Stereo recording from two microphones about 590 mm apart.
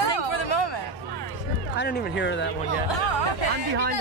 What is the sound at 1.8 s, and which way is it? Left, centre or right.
Speech, centre.